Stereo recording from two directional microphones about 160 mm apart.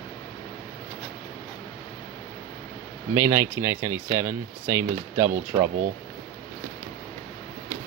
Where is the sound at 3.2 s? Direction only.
15° right (ahead or behind).